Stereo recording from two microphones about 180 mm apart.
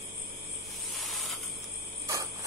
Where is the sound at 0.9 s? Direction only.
Centre (ahead or behind).